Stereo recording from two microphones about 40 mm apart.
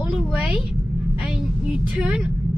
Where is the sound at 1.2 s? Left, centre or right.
Right.